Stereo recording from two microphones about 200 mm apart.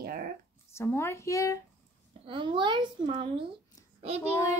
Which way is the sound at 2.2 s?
25° right (ahead or behind).